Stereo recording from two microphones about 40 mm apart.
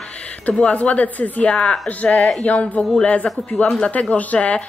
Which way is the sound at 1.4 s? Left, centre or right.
Centre.